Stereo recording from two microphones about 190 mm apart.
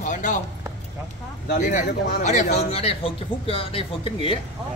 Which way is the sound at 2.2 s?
40° left (ahead or behind).